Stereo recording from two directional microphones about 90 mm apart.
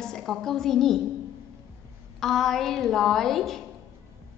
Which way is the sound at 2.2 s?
5° left (ahead or behind).